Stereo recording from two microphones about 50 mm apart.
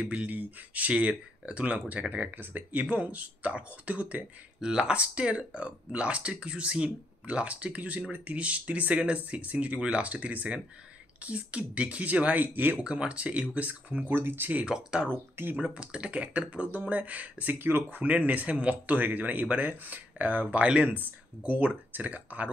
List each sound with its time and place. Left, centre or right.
0.0 s speech: right
0.3 s speech: right
2.3 s speech: right
4.6 s speech: centre
12.5 s speech: right
12.8 s speech: right
14.1 s speech: right
14.7 s speech: centre; by 18.0 s right
18.0 s speech: right
21.4 s speech: right